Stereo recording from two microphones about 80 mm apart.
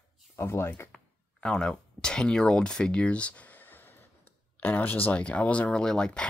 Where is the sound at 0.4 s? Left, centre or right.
Left.